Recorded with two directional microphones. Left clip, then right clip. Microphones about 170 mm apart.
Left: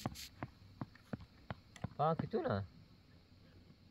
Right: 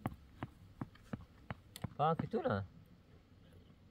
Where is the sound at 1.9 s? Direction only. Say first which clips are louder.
Right 1 dB; 50° left (ahead or behind).